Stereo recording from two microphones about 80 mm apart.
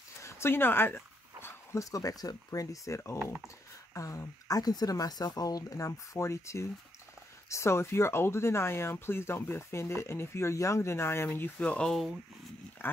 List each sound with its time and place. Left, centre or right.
0.2 s dog: left
1.8 s speech: left
11.6 s speech: centre
12.8 s speech: left